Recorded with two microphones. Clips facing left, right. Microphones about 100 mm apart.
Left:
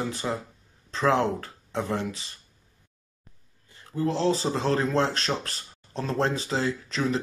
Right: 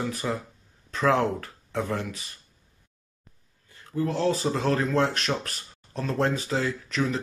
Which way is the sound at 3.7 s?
30° left (ahead or behind).